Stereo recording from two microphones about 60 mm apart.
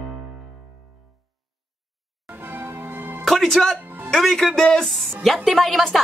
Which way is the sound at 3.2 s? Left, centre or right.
Centre.